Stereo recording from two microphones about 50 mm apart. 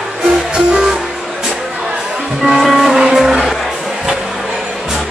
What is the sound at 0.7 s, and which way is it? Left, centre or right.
Music, centre.